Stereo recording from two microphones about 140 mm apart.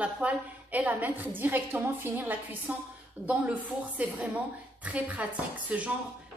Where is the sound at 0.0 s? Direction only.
10° right (ahead or behind).